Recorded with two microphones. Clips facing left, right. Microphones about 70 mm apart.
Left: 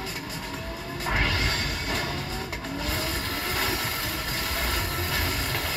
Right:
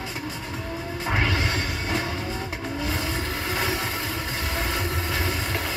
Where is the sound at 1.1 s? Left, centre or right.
Right.